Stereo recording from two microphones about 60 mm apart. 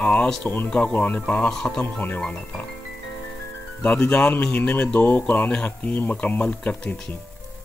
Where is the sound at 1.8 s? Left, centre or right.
Left.